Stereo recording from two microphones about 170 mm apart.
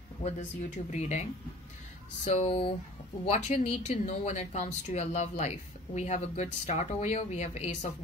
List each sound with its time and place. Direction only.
0.2 s speech: 40° left (ahead or behind)
2.2 s speech: 35° left (ahead or behind)